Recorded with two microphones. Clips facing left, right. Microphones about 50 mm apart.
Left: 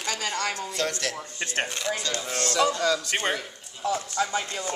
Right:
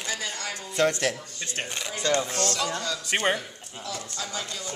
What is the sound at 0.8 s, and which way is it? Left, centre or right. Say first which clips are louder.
Speech: right 8 dB; centre.